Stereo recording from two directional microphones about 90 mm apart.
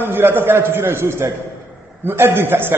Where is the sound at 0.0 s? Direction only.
25° right (ahead or behind).